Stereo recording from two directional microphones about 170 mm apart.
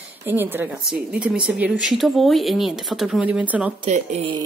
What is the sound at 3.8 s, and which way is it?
Speech, 45° right (ahead or behind).